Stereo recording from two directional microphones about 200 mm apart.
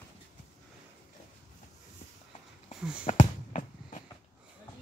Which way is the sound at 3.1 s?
35° left (ahead or behind).